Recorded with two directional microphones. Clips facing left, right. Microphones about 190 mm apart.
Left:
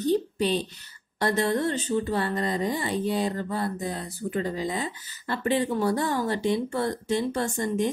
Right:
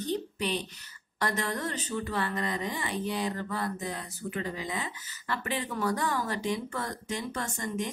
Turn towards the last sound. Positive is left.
turn(degrees=30)  # may be behind; listen again after turning